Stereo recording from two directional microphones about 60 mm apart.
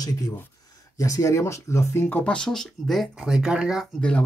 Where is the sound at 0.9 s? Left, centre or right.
Left.